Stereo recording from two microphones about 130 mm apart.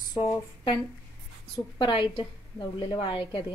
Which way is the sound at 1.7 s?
40° left (ahead or behind).